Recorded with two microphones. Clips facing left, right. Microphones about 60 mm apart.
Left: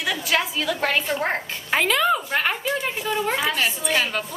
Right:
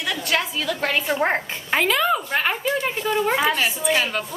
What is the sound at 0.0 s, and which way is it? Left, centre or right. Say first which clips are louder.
A woman's voice: even; centre.